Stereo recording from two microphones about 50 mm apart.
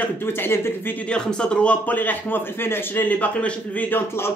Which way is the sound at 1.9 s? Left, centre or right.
Left.